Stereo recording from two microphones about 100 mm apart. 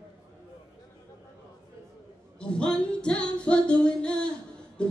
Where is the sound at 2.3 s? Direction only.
10° left (ahead or behind).